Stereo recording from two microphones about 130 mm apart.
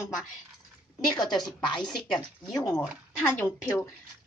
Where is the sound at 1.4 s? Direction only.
35° left (ahead or behind).